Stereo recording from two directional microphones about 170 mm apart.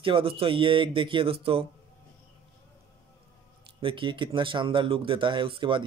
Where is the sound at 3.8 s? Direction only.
30° right (ahead or behind).